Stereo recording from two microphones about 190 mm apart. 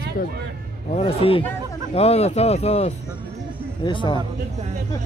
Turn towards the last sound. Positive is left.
turn(degrees=25)  # may be behind; listen again after turning